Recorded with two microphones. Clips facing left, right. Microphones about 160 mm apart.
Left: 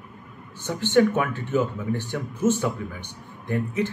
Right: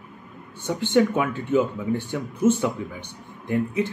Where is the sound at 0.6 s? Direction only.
15° right (ahead or behind).